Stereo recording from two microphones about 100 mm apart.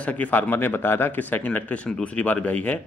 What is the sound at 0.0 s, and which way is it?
Speech, 15° left (ahead or behind).